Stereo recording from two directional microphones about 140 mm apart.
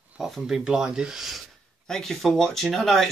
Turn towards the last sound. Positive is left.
turn(degrees=0)  # may be behind; listen again after turning